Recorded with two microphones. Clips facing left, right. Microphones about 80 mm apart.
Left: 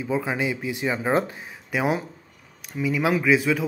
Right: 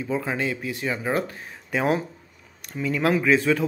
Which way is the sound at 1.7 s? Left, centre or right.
Centre.